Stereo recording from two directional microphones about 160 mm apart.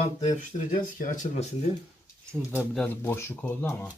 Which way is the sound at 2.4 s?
15° right (ahead or behind).